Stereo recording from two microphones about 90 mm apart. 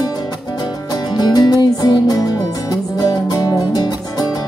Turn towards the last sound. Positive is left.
turn(degrees=45)  # may be behind; listen again after turning